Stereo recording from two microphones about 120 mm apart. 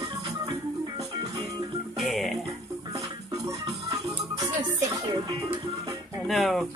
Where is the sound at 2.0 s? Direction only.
Centre (ahead or behind).